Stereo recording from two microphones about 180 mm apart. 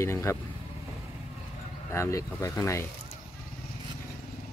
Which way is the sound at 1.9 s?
15° left (ahead or behind).